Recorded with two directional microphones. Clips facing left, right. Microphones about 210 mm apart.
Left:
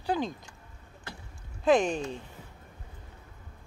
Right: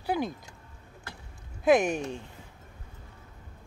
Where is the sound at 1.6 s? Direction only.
10° right (ahead or behind).